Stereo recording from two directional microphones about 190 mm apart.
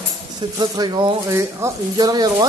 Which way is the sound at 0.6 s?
25° right (ahead or behind).